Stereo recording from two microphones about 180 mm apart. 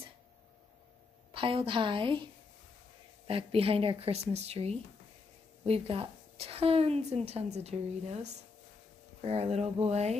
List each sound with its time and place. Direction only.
1.3 s a woman's voice: 30° right (ahead or behind)
3.3 s a woman's voice: 30° right (ahead or behind)